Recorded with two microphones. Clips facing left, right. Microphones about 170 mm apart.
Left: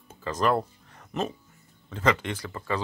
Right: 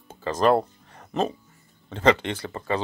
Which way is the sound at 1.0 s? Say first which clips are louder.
Right 5 dB; 35° right (ahead or behind).